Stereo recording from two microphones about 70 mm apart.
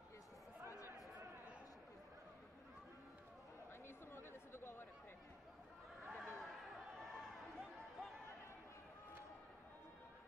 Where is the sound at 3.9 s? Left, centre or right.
Left.